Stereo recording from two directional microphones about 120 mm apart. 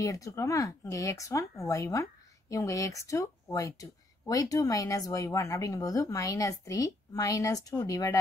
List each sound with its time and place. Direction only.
0.0 s speech: 30° left (ahead or behind)